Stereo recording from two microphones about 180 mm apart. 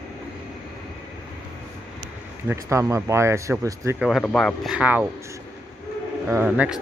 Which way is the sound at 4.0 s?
Centre (ahead or behind).